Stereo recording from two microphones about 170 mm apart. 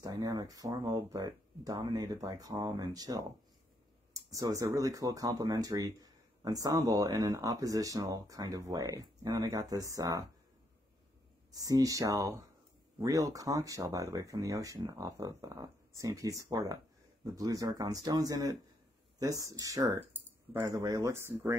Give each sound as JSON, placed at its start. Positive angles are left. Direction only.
{"t": 0.0, "sound": "speech", "side_deg": -20}
{"t": 11.5, "sound": "speech", "side_deg": -20}